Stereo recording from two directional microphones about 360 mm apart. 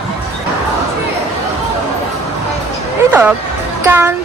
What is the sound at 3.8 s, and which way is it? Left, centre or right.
Speech, centre.